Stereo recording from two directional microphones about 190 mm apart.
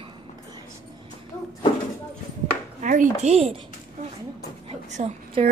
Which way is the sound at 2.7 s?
40° right (ahead or behind).